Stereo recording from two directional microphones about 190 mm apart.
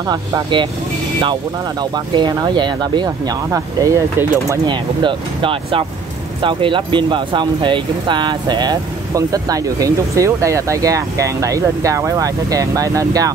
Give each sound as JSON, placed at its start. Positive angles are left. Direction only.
{"t": 0.1, "sound": "speech", "side_deg": -25}